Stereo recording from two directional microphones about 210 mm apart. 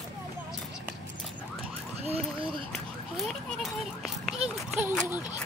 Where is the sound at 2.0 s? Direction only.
30° right (ahead or behind).